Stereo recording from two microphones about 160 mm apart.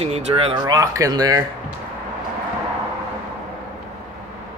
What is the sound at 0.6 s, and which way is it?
Speech, 20° right (ahead or behind).